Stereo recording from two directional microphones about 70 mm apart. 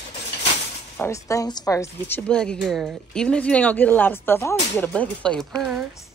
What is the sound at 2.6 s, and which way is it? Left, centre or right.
Speech, centre.